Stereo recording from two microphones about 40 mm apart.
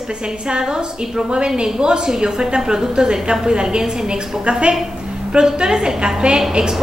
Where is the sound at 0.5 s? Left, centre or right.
Right.